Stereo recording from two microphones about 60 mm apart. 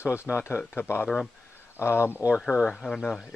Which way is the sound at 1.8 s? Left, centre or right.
Left.